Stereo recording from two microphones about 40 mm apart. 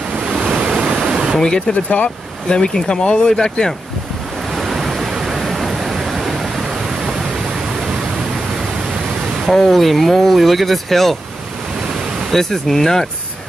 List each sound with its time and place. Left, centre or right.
0.2 s waves: centre
0.6 s waterfall: right
1.7 s speech: left
2.5 s speech: centre
4.5 s pink noise: centre
9.5 s speech: centre
12.3 s speech: centre